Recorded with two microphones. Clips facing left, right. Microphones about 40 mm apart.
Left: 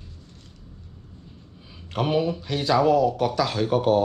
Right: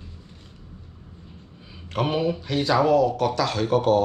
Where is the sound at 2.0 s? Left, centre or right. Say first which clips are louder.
Even; centre.